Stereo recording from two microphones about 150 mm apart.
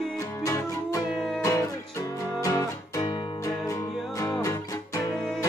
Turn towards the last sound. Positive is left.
turn(degrees=20)  # may be behind; listen again after turning